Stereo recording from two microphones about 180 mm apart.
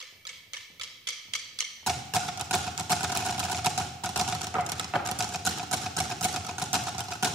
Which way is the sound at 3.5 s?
Centre (ahead or behind).